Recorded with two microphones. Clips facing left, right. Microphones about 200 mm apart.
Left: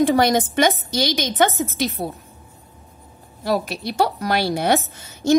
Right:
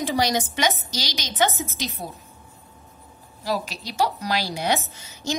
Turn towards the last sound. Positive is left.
turn(degrees=55)  # may be behind; listen again after turning